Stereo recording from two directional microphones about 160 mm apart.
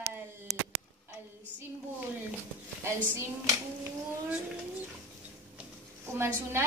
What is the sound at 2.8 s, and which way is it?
Speech, 15° right (ahead or behind).